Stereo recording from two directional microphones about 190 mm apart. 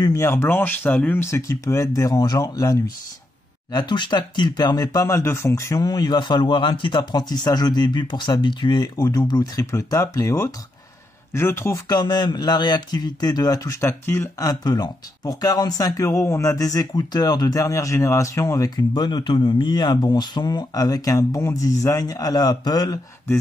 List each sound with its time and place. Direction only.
0.0 s speech: 15° left (ahead or behind)